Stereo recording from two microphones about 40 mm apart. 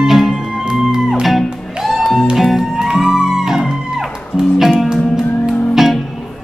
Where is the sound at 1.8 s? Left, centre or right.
Centre.